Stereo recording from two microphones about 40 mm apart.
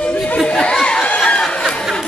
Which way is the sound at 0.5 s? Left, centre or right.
Centre.